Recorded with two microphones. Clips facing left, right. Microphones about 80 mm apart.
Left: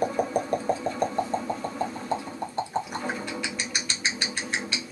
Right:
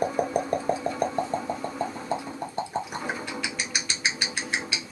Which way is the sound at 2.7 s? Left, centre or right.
Centre.